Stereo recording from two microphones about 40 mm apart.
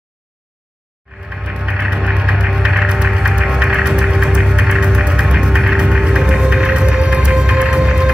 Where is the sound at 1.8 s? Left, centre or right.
Centre.